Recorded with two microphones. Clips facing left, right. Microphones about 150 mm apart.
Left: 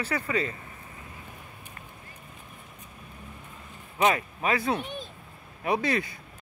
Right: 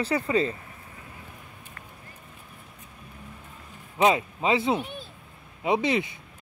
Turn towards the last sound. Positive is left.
turn(degrees=-20)  # may be behind; listen again after turning